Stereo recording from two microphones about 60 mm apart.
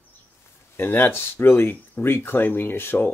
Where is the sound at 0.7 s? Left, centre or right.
Left.